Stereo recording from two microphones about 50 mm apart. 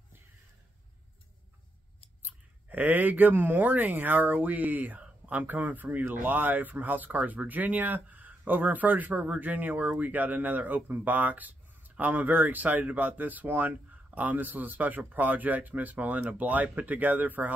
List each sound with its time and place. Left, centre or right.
2.2 s speech: right